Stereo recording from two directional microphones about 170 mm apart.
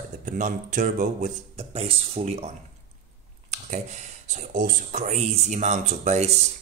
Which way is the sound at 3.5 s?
45° right (ahead or behind).